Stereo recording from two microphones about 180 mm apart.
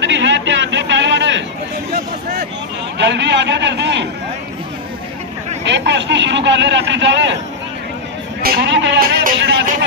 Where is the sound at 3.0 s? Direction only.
75° right (ahead or behind).